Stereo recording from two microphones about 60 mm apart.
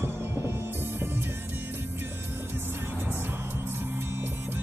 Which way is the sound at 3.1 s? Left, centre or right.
Right.